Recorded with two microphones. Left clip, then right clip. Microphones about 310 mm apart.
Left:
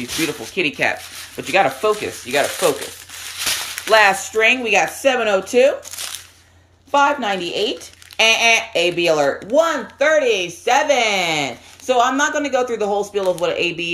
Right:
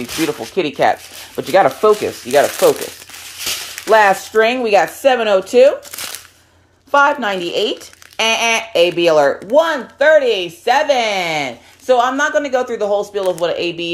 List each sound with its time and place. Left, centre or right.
0.6 s speech: centre
3.9 s speech: centre
6.9 s speech: centre